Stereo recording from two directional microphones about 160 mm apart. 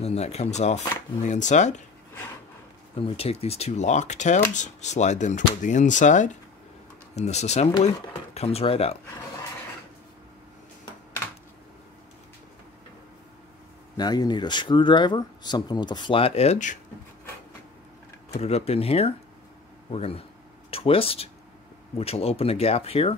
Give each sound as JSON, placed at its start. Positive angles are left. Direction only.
{"t": 0.0, "sound": "speech", "side_deg": 40}
{"t": 3.0, "sound": "speech", "side_deg": 40}
{"t": 13.9, "sound": "speech", "side_deg": 25}
{"t": 18.4, "sound": "speech", "side_deg": 40}